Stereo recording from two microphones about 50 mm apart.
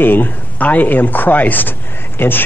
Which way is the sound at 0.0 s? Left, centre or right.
Left.